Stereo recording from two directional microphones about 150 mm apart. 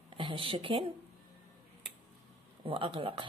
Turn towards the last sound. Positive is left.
turn(degrees=-35)  # may be behind; listen again after turning